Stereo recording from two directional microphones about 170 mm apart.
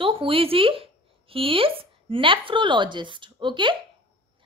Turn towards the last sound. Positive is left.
turn(degrees=-30)  # may be behind; listen again after turning